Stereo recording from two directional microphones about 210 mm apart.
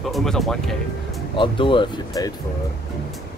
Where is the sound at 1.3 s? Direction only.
25° left (ahead or behind).